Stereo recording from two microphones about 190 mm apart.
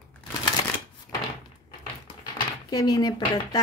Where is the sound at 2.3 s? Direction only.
20° left (ahead or behind).